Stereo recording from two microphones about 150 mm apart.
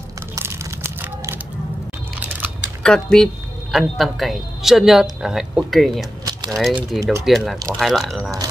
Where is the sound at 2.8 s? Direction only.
5° left (ahead or behind).